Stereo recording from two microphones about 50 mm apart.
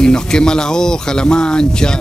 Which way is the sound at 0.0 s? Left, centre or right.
Centre.